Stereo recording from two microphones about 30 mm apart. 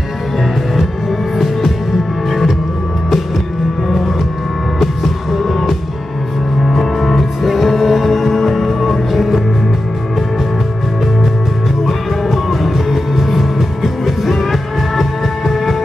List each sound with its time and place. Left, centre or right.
5.3 s music: centre
6.8 s music: centre
11.8 s music: centre